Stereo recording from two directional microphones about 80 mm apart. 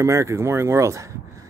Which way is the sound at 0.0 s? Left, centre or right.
Right.